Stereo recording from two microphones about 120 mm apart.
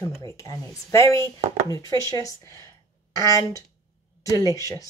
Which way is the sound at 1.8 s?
40° right (ahead or behind).